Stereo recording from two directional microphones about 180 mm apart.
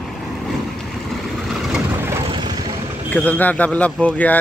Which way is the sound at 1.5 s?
Centre (ahead or behind).